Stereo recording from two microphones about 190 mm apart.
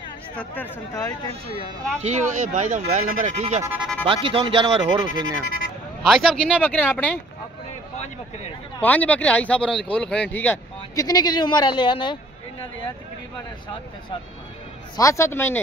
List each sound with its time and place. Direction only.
0.4 s speech: 15° left (ahead or behind)
2.0 s speech: 40° right (ahead or behind)
3.7 s speech: centre (ahead or behind)
4.0 s speech: 25° right (ahead or behind)
6.0 s speech: centre (ahead or behind)
8.8 s speech: 10° left (ahead or behind); by 12.2 s 25° left (ahead or behind)
15.0 s speech: 15° left (ahead or behind)